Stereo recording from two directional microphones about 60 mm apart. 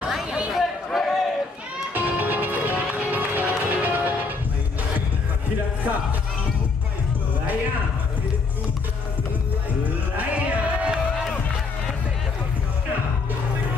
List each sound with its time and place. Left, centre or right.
0.1 s chatter: centre
2.0 s music: right
9.8 s music: right